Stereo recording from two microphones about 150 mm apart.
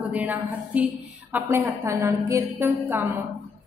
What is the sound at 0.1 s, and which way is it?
A woman's voice, 10° right (ahead or behind).